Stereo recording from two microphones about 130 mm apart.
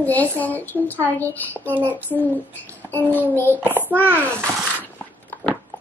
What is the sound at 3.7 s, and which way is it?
Speech, 15° right (ahead or behind).